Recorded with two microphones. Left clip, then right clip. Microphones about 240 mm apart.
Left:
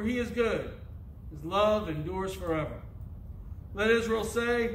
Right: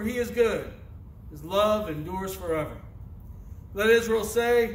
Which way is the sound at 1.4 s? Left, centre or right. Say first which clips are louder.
Right 2 dB; centre.